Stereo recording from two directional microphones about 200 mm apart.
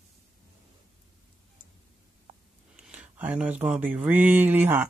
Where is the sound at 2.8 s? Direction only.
5° right (ahead or behind).